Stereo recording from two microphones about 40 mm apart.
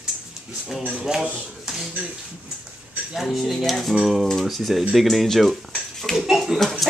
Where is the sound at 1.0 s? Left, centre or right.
Centre.